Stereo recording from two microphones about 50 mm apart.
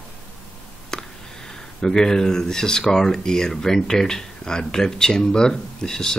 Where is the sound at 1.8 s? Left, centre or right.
Centre.